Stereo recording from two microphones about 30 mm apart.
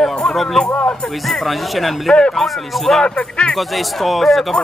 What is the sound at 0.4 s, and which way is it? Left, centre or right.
Speech, centre.